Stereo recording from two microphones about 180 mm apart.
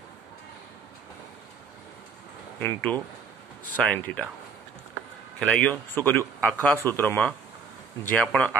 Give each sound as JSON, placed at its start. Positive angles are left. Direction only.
{"t": 2.6, "sound": "speech", "side_deg": 10}
{"t": 5.4, "sound": "speech", "side_deg": 5}